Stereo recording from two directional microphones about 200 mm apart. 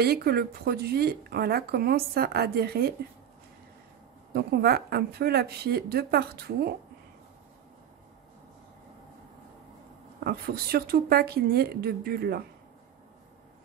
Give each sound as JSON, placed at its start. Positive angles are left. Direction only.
{"t": 0.0, "sound": "speech", "side_deg": -50}
{"t": 4.3, "sound": "speech", "side_deg": -50}
{"t": 10.2, "sound": "speech", "side_deg": -50}